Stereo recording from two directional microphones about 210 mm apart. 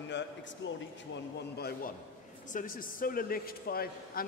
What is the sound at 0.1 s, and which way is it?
A man's voice, 60° left (ahead or behind).